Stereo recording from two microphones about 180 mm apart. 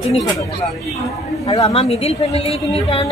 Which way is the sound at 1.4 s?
35° left (ahead or behind).